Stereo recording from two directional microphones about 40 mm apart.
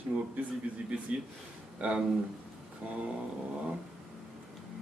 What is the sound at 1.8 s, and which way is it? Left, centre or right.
Speech, right.